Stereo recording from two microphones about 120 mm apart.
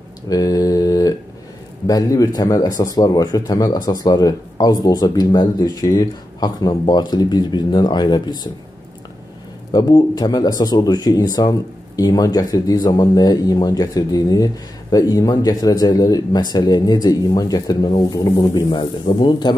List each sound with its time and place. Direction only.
0.3 s mantra: 30° left (ahead or behind)
1.9 s speech: 30° left (ahead or behind)
9.7 s speech: 35° left (ahead or behind)